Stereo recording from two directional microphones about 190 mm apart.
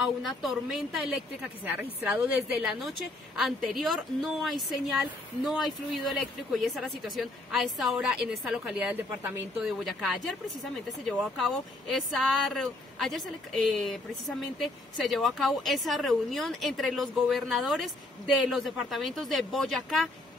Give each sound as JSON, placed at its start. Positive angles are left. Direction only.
{"t": 0.0, "sound": "a woman's voice", "side_deg": 0}
{"t": 9.8, "sound": "a woman's voice", "side_deg": 0}